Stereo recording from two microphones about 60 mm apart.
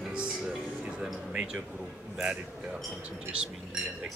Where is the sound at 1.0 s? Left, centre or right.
Centre.